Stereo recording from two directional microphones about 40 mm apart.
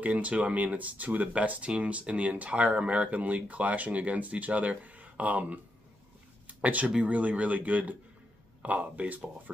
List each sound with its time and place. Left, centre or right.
0.0 s speech: right
6.6 s speech: right